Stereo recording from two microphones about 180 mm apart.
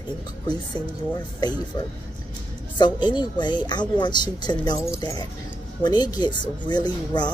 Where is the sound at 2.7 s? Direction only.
25° left (ahead or behind).